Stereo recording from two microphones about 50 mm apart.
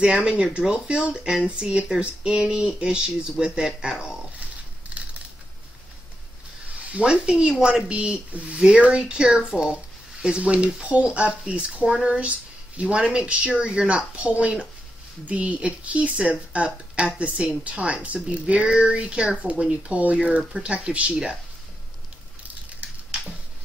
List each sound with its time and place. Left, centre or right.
0.0 s speech: centre
6.8 s speech: right
7.9 s speech: right
20.2 s speech: centre